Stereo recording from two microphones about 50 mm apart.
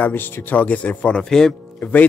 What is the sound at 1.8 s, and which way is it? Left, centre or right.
Speech, left.